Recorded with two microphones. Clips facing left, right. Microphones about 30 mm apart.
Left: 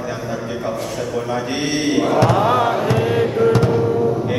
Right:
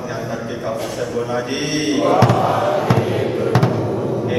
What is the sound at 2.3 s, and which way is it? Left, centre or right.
Speech, left.